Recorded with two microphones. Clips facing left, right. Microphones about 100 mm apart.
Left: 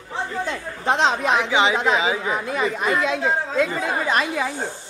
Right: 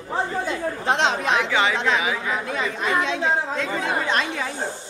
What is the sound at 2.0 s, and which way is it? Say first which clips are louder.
Speech: left 2 dB; 25° left (ahead or behind).